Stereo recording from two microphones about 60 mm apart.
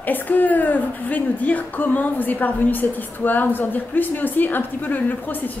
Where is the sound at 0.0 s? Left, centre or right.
Left.